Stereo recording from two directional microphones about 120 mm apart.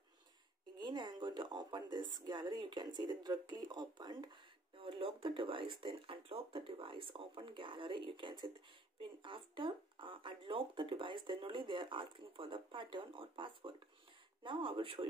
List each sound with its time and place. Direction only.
0.7 s speech: 35° right (ahead or behind)
4.7 s speech: 45° right (ahead or behind)